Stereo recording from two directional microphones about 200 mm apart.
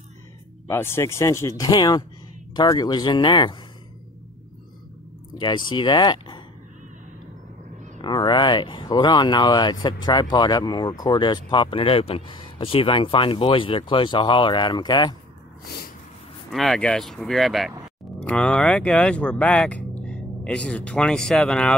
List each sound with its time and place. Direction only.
0.7 s speech: 10° left (ahead or behind)
5.4 s speech: 20° left (ahead or behind)
8.0 s speech: 20° left (ahead or behind)
16.5 s speech: centre (ahead or behind)